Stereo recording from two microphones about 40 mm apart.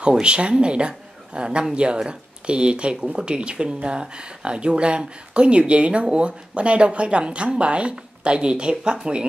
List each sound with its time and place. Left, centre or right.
0.0 s speech: right